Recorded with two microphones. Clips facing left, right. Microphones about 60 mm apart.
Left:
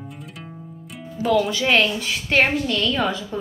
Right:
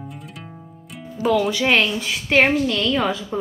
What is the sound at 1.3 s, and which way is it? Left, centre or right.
A woman's voice, centre.